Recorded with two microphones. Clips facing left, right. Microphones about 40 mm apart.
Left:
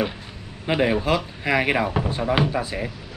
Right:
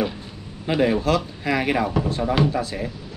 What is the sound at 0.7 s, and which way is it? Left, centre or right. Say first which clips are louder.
Speech: right 1 dB; centre.